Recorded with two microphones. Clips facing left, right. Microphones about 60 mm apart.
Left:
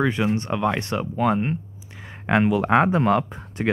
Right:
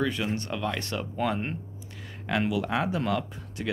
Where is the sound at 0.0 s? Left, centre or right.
Left.